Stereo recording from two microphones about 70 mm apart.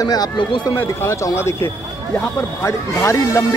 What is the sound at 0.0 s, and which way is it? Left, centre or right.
Speech, left.